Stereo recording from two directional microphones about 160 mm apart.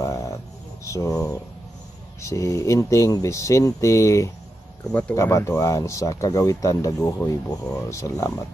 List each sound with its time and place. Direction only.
0.0 s a sound: 20° left (ahead or behind)
0.8 s speech: 20° left (ahead or behind)
4.8 s speech: 10° left (ahead or behind)